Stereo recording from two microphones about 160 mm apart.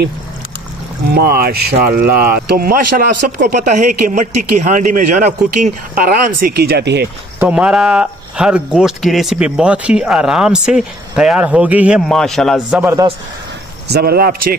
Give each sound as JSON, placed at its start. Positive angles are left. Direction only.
{"t": 1.1, "sound": "speech", "side_deg": -75}
{"t": 7.3, "sound": "speech", "side_deg": -5}
{"t": 12.1, "sound": "speech", "side_deg": 0}
{"t": 12.8, "sound": "a man's voice", "side_deg": -15}
{"t": 13.8, "sound": "speech", "side_deg": -80}